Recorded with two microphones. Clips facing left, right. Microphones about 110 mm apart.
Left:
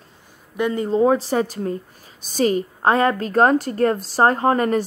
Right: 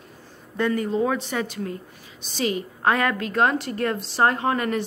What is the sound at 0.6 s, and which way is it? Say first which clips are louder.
Speech: left 2 dB; 20° left (ahead or behind).